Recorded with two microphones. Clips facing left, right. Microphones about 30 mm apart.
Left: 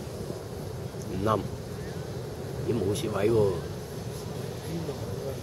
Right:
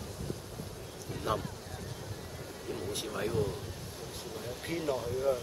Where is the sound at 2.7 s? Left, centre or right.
Left.